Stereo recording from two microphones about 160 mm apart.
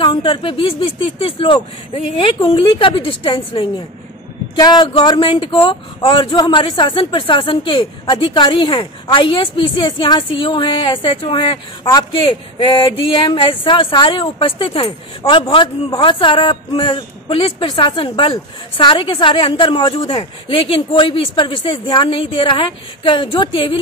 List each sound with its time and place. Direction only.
0.0 s speech: 30° left (ahead or behind)
4.6 s speech: 25° left (ahead or behind)